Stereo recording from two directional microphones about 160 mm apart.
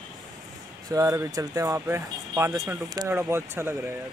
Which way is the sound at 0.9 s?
20° right (ahead or behind).